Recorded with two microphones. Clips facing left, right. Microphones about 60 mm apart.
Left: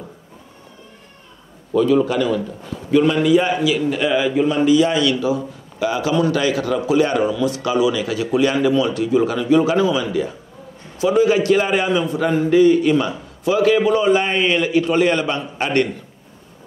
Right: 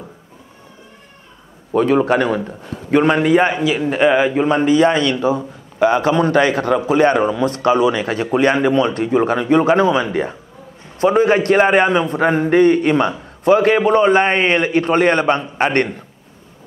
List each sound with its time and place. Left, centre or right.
1.7 s a man's voice: right